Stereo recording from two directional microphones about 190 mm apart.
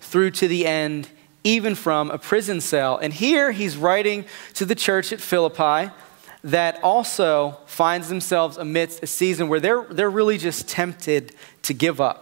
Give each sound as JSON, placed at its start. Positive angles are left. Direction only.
{"t": 0.1, "sound": "speech", "side_deg": -10}
{"t": 6.8, "sound": "speech", "side_deg": -30}
{"t": 7.2, "sound": "speech", "side_deg": -10}